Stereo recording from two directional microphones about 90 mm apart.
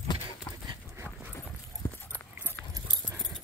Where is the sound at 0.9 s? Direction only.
20° right (ahead or behind).